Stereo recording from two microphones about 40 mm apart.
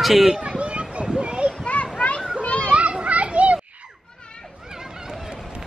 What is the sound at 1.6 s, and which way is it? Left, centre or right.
Children playing, left.